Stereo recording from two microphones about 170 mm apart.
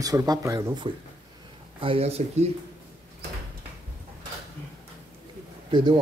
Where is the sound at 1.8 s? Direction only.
35° right (ahead or behind).